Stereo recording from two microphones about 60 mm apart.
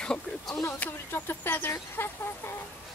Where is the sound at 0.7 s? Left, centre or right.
Left.